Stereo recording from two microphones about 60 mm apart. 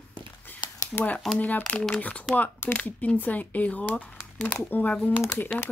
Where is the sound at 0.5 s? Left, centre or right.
Left.